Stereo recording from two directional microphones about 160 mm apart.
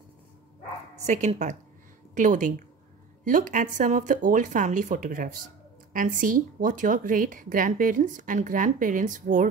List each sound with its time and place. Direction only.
1.0 s a woman's voice: 45° right (ahead or behind)